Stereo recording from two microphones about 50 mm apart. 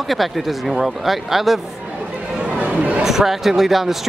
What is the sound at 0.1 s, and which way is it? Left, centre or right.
Speech, centre.